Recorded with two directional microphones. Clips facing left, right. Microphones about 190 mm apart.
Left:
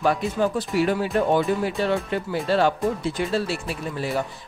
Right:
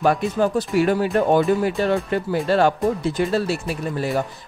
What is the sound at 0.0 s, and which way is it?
Speech, 50° right (ahead or behind).